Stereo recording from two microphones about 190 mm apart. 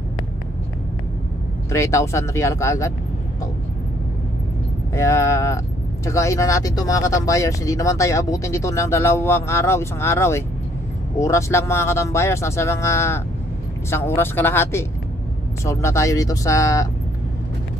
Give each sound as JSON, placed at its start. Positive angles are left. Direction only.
{"t": 1.7, "sound": "speech", "side_deg": 15}
{"t": 4.9, "sound": "speech", "side_deg": 15}